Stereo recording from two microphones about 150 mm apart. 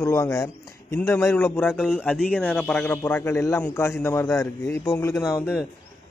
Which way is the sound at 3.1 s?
15° left (ahead or behind).